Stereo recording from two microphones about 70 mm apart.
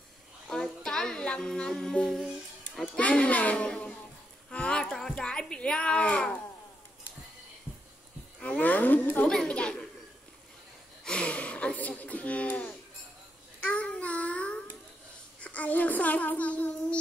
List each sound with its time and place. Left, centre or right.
0.5 s child singing: centre
2.8 s speech: centre
4.5 s a sound: centre
5.1 s speech: centre
8.4 s speech: centre
9.5 s speech: centre
11.1 s a sound: centre
13.6 s babbling: centre
15.4 s a child's voice: centre